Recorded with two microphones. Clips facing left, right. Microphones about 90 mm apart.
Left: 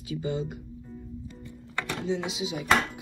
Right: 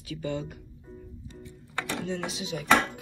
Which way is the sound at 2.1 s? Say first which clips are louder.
Left 3 dB; 10° left (ahead or behind).